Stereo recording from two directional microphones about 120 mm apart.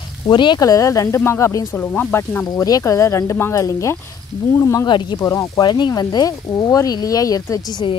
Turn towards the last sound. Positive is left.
turn(degrees=35)  # may be behind; listen again after turning